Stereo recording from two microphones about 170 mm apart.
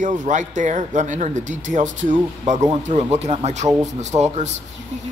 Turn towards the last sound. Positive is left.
turn(degrees=-40)  # may be behind; listen again after turning